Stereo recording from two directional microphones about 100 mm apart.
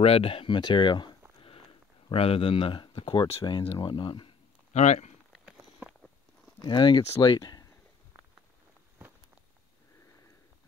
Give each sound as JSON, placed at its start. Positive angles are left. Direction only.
{"t": 0.0, "sound": "speech", "side_deg": 75}
{"t": 2.0, "sound": "speech", "side_deg": 70}
{"t": 5.3, "sound": "a sound", "side_deg": -5}
{"t": 6.6, "sound": "speech", "side_deg": 50}